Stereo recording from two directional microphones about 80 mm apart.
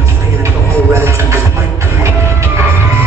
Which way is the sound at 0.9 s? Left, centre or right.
Right.